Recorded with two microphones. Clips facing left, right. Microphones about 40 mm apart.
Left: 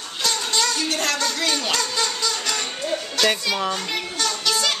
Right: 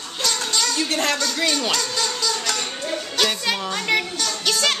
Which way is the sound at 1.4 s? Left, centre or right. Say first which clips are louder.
Right 2 dB; centre.